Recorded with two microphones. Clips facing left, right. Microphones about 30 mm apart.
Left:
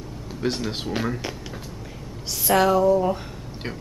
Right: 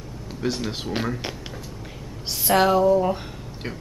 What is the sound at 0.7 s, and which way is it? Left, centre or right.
Speech, centre.